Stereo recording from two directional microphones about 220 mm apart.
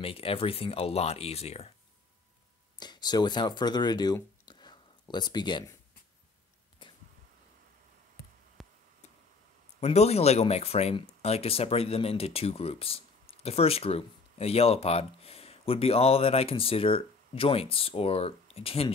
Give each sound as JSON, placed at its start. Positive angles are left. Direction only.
{"t": 0.0, "sound": "speech", "side_deg": 25}
{"t": 2.8, "sound": "speech", "side_deg": 20}
{"t": 6.8, "sound": "arrow", "side_deg": 20}
{"t": 8.6, "sound": "tick", "side_deg": 0}
{"t": 9.8, "sound": "speech", "side_deg": 30}